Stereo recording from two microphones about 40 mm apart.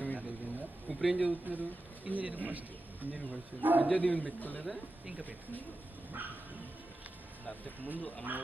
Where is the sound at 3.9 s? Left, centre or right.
Left.